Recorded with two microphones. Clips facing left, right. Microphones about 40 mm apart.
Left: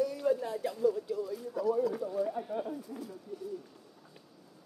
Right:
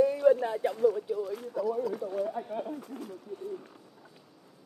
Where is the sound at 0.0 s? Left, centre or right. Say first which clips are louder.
Right 7 dB; right.